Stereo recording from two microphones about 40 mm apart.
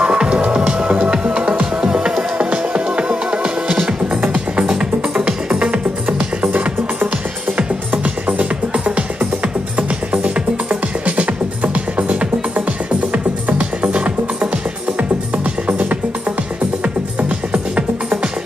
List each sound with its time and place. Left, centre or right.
0.0 s music: right
5.2 s music: right
6.4 s music: right